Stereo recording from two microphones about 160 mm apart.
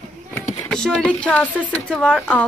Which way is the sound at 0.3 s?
20° left (ahead or behind).